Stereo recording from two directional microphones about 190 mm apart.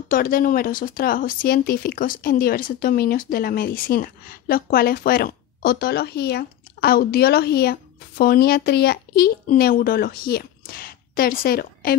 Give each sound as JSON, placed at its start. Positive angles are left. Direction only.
{"t": 0.1, "sound": "speech", "side_deg": 50}